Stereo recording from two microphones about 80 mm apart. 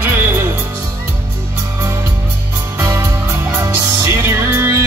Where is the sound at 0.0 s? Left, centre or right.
Right.